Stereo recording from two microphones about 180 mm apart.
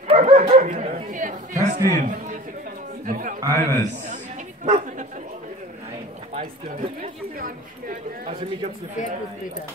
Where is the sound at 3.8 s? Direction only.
40° right (ahead or behind).